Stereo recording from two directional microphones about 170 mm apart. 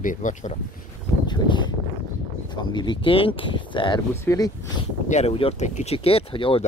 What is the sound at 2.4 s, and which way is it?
Speech, 25° left (ahead or behind).